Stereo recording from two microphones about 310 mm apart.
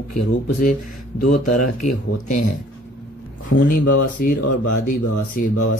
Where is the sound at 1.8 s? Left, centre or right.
Left.